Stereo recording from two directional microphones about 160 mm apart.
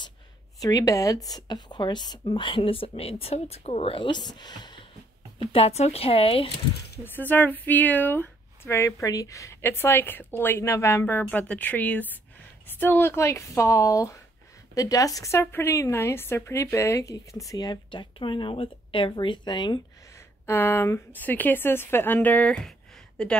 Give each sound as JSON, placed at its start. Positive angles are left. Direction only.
{"t": 0.6, "sound": "a woman's voice", "side_deg": 25}
{"t": 7.1, "sound": "speech", "side_deg": 10}
{"t": 20.4, "sound": "speech", "side_deg": 15}